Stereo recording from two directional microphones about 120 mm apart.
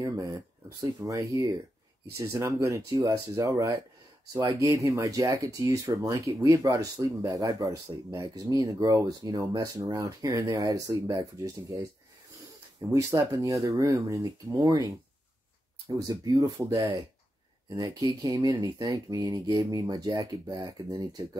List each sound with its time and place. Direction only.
0.0 s speech: 30° right (ahead or behind)
12.9 s speech: 30° right (ahead or behind)